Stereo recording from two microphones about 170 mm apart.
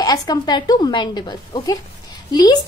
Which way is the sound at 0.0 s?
20° left (ahead or behind).